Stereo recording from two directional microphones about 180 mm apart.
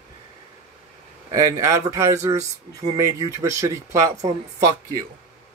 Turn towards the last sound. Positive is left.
turn(degrees=-20)  # may be behind; listen again after turning